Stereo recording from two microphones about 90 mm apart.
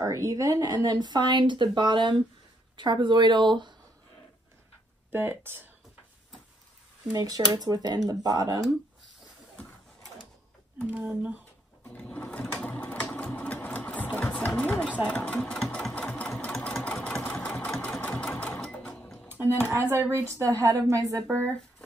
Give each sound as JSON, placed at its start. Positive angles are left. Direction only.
{"t": 0.0, "sound": "speech", "side_deg": -35}
{"t": 5.1, "sound": "speech", "side_deg": -25}
{"t": 7.1, "sound": "speech", "side_deg": -45}
{"t": 10.9, "sound": "speech", "side_deg": -15}
{"t": 11.9, "sound": "sewing machine", "side_deg": 15}
{"t": 14.1, "sound": "engine", "side_deg": 15}
{"t": 15.1, "sound": "sewing machine", "side_deg": 15}
{"t": 15.9, "sound": "engine", "side_deg": 15}
{"t": 16.5, "sound": "engine", "side_deg": 5}
{"t": 16.8, "sound": "engine", "side_deg": 15}
{"t": 17.3, "sound": "sewing machine", "side_deg": 10}
{"t": 18.0, "sound": "sewing machine", "side_deg": 15}
{"t": 18.9, "sound": "music", "side_deg": 5}
{"t": 19.7, "sound": "speech", "side_deg": -30}